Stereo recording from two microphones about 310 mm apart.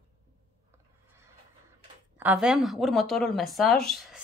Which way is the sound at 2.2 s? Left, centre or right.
Centre.